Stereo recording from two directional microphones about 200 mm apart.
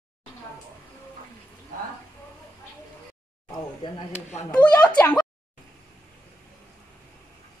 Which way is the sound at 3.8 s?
35° left (ahead or behind).